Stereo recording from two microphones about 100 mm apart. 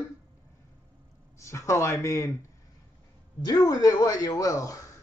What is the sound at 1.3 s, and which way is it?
Speech, 30° left (ahead or behind).